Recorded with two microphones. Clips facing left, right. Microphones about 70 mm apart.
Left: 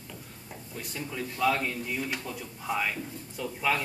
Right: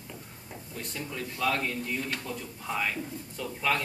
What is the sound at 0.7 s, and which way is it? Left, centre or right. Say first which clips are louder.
Speech: left 1 dB; centre.